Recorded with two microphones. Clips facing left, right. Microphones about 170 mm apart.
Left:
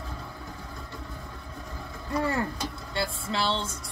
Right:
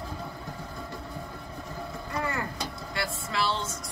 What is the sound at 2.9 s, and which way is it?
Speech, 30° left (ahead or behind).